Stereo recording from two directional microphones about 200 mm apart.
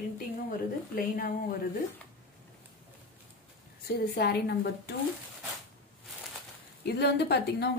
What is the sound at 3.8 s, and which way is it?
Speech, 50° left (ahead or behind).